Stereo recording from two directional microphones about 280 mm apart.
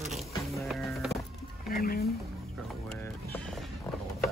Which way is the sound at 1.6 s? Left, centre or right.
Left.